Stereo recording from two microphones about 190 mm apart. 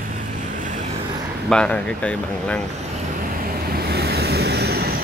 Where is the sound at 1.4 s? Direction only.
5° left (ahead or behind).